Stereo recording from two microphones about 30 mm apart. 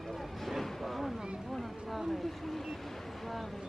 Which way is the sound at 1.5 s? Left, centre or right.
Centre.